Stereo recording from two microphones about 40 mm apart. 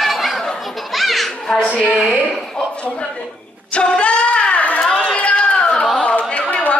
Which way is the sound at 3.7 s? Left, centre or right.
Left.